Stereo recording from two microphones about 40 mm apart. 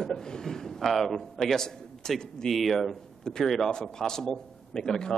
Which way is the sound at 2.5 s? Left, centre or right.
Centre.